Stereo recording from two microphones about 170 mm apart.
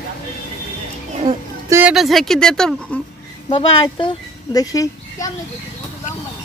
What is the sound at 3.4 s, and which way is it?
Speech, 30° left (ahead or behind).